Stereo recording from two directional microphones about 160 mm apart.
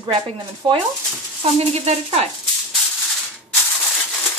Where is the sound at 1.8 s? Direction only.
40° right (ahead or behind).